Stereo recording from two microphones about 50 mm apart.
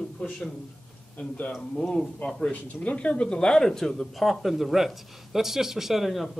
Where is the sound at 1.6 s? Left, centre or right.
Centre.